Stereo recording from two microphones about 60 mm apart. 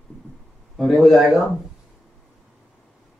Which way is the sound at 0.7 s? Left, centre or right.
Centre.